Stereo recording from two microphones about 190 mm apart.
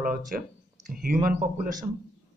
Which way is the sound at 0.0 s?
45° right (ahead or behind).